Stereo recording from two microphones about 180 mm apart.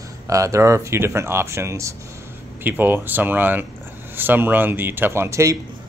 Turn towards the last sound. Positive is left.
turn(degrees=-15)  # may be behind; listen again after turning